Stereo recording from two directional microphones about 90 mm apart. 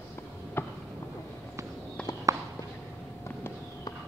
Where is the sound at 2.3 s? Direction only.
40° right (ahead or behind).